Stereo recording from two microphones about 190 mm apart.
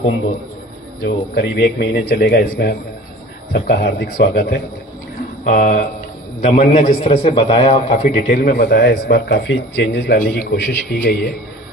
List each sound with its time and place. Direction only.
1.0 s a man's voice: 60° left (ahead or behind)
10.1 s a man's voice: 50° left (ahead or behind)